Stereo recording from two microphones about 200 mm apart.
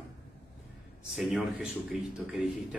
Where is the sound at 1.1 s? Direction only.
Centre (ahead or behind).